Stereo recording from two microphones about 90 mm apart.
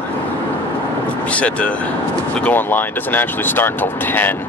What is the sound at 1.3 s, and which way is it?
Speech, 15° left (ahead or behind).